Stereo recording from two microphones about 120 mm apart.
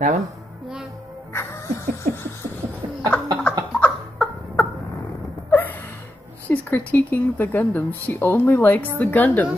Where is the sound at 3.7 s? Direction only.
10° left (ahead or behind).